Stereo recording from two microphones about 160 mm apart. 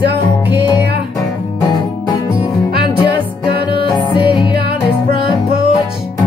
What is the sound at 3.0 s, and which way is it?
Music, 30° left (ahead or behind).